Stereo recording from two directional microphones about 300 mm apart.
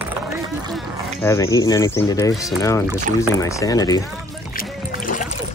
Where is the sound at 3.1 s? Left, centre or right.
Right.